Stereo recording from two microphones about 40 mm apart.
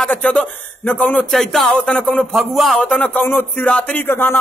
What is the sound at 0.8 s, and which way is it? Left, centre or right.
Speech, left.